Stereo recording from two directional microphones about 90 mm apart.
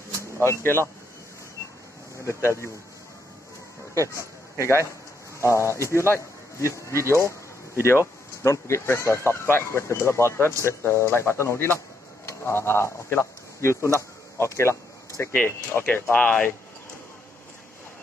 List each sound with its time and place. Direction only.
0.4 s speech: 30° left (ahead or behind)
2.2 s speech: 30° left (ahead or behind)
4.1 s a sound: 35° left (ahead or behind)
5.4 s a man's voice: 35° left (ahead or behind)
7.0 s speech: 30° right (ahead or behind)
7.8 s a man's voice: 30° left (ahead or behind)
15.3 s speech: 20° left (ahead or behind)